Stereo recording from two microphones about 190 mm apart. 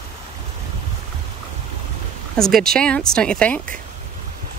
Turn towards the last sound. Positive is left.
turn(degrees=5)  # may be behind; listen again after turning